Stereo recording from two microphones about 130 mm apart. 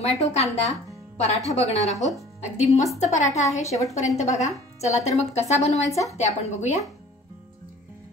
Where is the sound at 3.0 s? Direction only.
70° left (ahead or behind).